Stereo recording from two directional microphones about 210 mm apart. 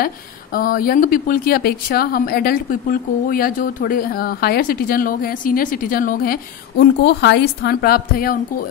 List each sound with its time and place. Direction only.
0.0 s speech: 45° left (ahead or behind)